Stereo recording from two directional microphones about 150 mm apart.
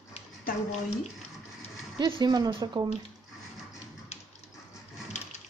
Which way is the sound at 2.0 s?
30° right (ahead or behind).